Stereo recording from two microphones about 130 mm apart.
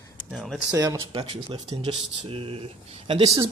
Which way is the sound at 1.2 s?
45° right (ahead or behind).